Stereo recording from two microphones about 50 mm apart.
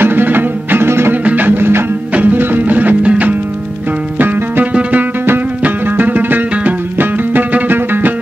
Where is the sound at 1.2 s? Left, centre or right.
Right.